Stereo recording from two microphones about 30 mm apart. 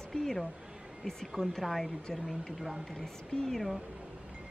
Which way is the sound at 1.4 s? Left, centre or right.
Centre.